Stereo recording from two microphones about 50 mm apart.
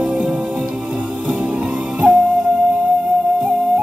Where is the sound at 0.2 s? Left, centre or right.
Right.